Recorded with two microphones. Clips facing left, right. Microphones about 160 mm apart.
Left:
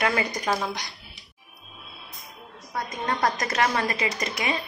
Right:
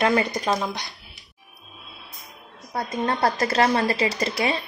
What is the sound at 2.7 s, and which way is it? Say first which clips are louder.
Speech: right 4 dB; 30° right (ahead or behind).